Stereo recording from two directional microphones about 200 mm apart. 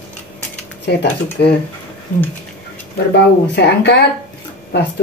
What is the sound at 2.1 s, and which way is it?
Speech, 45° left (ahead or behind).